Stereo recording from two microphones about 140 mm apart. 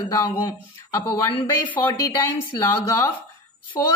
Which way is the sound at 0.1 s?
25° left (ahead or behind).